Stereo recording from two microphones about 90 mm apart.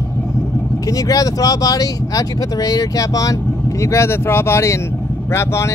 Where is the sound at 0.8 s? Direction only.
40° left (ahead or behind).